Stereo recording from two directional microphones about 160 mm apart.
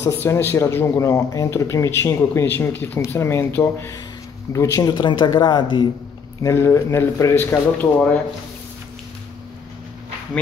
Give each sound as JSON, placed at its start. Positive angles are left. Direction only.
{"t": 0.0, "sound": "speech", "side_deg": 15}
{"t": 6.4, "sound": "speech", "side_deg": 15}